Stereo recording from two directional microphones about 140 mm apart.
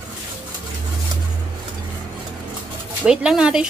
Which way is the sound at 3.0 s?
5° right (ahead or behind).